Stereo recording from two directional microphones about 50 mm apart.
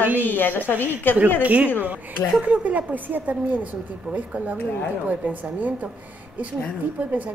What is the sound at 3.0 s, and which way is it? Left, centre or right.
A woman's voice, right.